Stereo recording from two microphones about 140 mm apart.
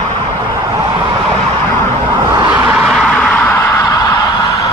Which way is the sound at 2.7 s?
Centre (ahead or behind).